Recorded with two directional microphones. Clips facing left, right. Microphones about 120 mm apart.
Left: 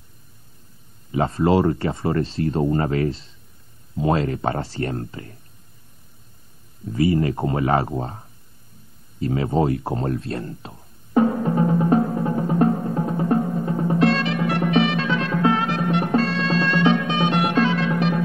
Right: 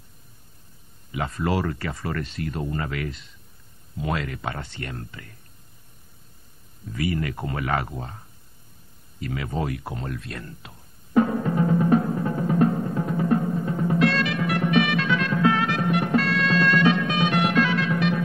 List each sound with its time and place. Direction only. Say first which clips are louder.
1.1 s speech: left 7 dB; 30° left (ahead or behind)
6.9 s speech: left 7 dB; 30° left (ahead or behind)
9.2 s a sound: left 8 dB; 30° left (ahead or behind)